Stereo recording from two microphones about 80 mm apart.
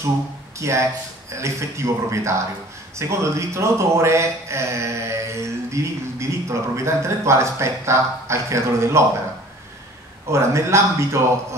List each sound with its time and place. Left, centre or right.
0.6 s speech: right
10.3 s speech: right